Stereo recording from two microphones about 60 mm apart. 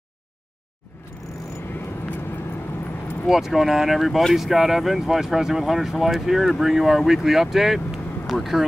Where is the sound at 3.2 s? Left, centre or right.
Centre.